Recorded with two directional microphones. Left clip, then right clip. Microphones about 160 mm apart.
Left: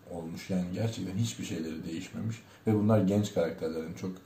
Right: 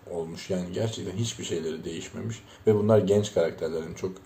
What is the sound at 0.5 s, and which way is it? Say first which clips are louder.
Speech: right 5 dB; 15° right (ahead or behind).